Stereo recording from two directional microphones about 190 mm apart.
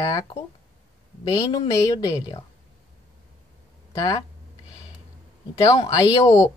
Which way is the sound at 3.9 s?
15° left (ahead or behind).